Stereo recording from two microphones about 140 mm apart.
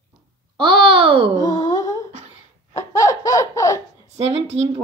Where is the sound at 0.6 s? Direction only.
40° right (ahead or behind).